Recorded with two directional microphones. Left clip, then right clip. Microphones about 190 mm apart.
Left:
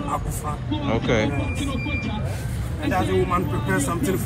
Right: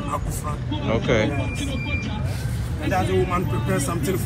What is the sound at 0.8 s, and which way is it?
Speech, 5° left (ahead or behind).